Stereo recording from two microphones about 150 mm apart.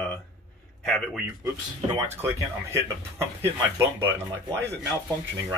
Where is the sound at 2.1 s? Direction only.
15° right (ahead or behind).